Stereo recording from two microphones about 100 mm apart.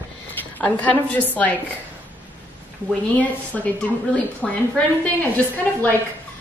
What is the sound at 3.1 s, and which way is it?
Speech, 15° left (ahead or behind).